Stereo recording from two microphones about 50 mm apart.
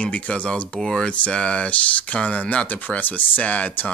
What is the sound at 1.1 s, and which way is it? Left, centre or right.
Speech, left.